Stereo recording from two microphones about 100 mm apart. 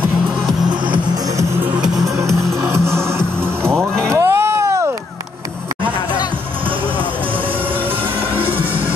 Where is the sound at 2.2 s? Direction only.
30° right (ahead or behind).